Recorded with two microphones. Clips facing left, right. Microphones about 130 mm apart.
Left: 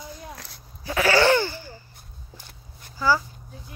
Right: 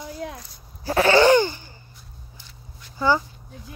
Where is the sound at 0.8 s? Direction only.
30° right (ahead or behind).